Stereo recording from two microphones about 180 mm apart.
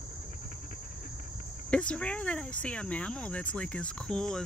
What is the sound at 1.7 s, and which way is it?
Speech, 5° left (ahead or behind).